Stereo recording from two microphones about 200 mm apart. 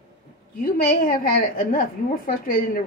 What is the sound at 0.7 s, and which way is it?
Speech, 45° left (ahead or behind).